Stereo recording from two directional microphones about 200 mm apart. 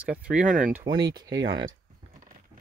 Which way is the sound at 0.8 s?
20° right (ahead or behind).